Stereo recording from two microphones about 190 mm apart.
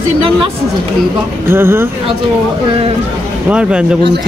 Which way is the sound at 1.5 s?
10° right (ahead or behind).